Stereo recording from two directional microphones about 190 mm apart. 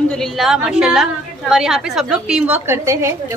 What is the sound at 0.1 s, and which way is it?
A woman's voice, centre (ahead or behind).